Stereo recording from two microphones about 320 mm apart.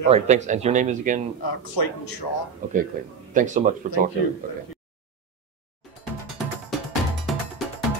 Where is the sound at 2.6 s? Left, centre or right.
Right.